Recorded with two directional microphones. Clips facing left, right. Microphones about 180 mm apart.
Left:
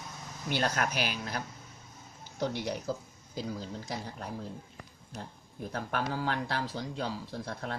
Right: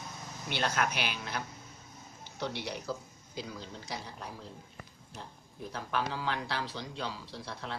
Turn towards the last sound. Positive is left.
turn(degrees=45)  # may be behind; listen again after turning